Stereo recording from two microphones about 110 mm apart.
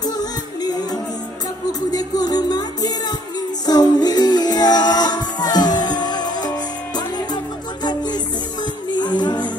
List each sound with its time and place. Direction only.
0.0 s music: 35° left (ahead or behind)
7.8 s music: 40° left (ahead or behind)